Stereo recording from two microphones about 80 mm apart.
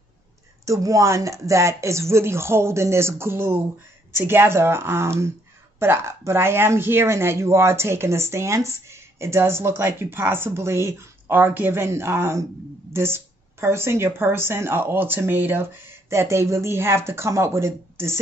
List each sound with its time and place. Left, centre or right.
0.7 s speech: right